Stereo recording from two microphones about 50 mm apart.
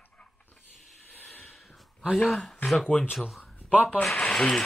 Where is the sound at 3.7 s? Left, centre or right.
Right.